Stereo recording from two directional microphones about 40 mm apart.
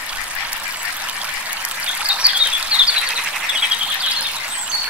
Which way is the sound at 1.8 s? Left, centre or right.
Right.